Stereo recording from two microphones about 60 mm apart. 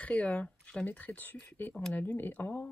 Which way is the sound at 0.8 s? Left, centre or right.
Left.